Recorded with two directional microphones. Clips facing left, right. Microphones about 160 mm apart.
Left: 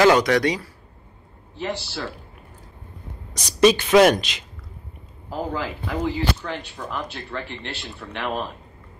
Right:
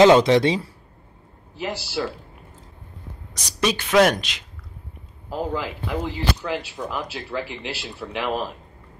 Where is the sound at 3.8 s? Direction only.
5° left (ahead or behind).